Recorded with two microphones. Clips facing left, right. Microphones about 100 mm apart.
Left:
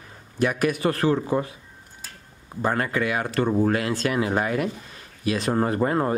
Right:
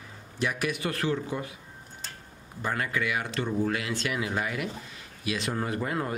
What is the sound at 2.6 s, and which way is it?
Speech, 45° left (ahead or behind).